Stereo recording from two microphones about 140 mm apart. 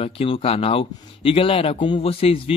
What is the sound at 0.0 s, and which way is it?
Speech, 40° left (ahead or behind).